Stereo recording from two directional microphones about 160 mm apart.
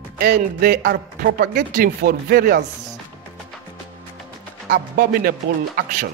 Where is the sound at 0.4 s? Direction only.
60° right (ahead or behind).